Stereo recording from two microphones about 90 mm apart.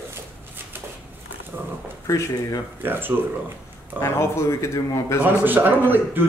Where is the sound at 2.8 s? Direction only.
20° right (ahead or behind).